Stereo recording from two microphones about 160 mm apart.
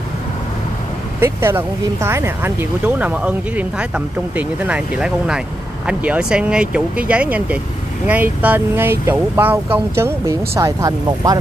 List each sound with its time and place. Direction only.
1.2 s speech: 15° right (ahead or behind)